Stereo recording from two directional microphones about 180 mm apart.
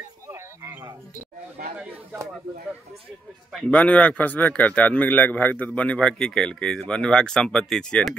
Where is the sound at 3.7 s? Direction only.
5° left (ahead or behind).